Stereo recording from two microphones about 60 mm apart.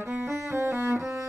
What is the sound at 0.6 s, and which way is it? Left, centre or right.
Cello, right.